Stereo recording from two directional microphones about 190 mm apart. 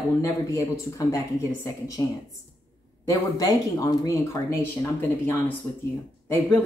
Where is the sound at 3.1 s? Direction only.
20° left (ahead or behind).